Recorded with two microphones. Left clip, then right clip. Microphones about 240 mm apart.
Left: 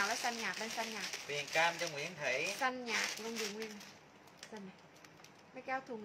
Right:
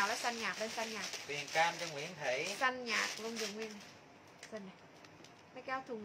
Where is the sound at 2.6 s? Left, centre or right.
Centre.